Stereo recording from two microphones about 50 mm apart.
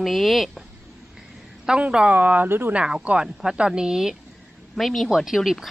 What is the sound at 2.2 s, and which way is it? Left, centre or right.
Speech, right.